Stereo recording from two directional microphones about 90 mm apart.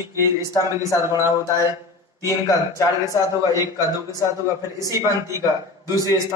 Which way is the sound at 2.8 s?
40° left (ahead or behind).